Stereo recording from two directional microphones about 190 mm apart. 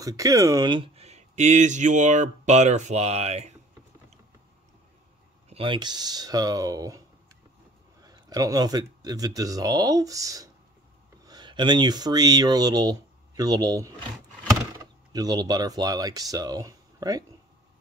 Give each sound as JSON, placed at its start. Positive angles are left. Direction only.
{"t": 0.0, "sound": "speech", "side_deg": -20}
{"t": 5.5, "sound": "speech", "side_deg": -25}
{"t": 8.0, "sound": "speech", "side_deg": -20}